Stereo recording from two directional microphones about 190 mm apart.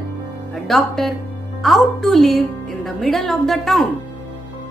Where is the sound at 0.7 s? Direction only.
Centre (ahead or behind).